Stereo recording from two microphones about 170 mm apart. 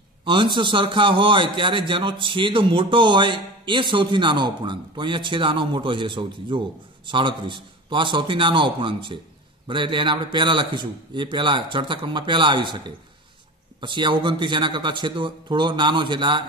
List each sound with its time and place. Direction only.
0.2 s a man's voice: 30° right (ahead or behind)